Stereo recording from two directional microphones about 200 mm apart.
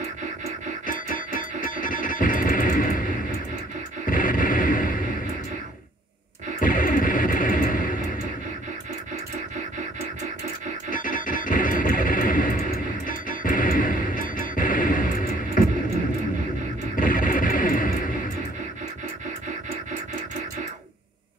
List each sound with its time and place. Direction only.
1.1 s music: 45° left (ahead or behind)
4.1 s a sound: 45° left (ahead or behind)
6.6 s music: 45° left (ahead or behind)
10.9 s music: 40° left (ahead or behind)
16.9 s music: 45° left (ahead or behind)